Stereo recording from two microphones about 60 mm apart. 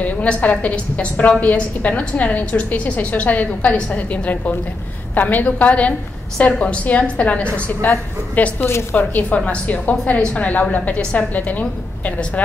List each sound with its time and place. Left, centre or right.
0.0 s a woman's voice: left
8.5 s speech: left
8.9 s a woman's voice: left